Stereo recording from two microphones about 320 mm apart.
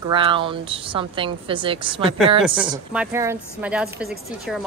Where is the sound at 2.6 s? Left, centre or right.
Centre.